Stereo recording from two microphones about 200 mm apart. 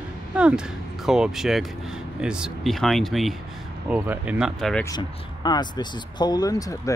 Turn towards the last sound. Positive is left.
turn(degrees=15)  # may be behind; listen again after turning